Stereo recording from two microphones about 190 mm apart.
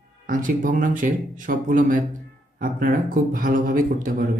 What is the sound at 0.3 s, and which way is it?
Speech, 45° right (ahead or behind).